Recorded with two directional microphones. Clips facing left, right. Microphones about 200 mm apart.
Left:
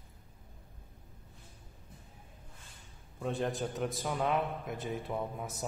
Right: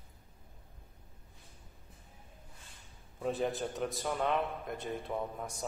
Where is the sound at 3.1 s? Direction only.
Centre (ahead or behind).